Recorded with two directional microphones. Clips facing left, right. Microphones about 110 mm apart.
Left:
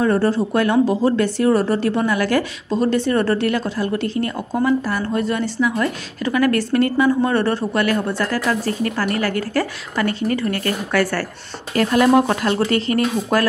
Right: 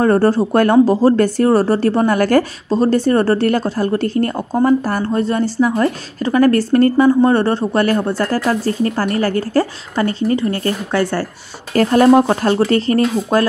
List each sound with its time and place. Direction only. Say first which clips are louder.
0.0 s speech: right 4 dB; 45° right (ahead or behind); by 11.2 s 25° right (ahead or behind)
11.7 s speech: right 4 dB; 35° right (ahead or behind)
12.2 s speech: right 4 dB; 25° right (ahead or behind)